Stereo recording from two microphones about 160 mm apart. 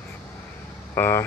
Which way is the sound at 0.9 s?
15° left (ahead or behind).